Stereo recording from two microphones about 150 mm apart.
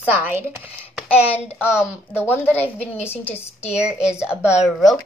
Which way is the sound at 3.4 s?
45° left (ahead or behind).